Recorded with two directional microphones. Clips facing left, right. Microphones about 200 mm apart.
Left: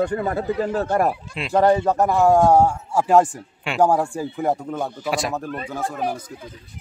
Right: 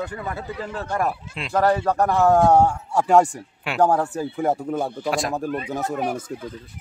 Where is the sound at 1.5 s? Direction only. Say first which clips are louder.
Left 3 dB; 20° left (ahead or behind); by 5.4 s 5° left (ahead or behind).